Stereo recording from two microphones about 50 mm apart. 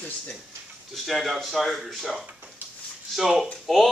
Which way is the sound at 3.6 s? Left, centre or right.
Centre.